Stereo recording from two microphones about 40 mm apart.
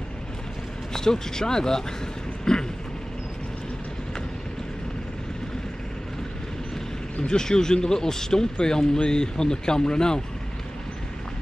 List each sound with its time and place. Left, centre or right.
0.9 s speech: centre
2.5 s vehicle: centre
7.2 s speech: centre